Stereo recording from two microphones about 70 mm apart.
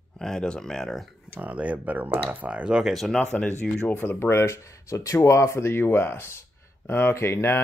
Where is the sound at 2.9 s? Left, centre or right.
Centre.